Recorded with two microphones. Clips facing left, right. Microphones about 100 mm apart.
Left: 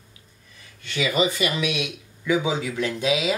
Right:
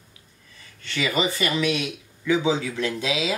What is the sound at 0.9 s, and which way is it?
Speech, 15° left (ahead or behind).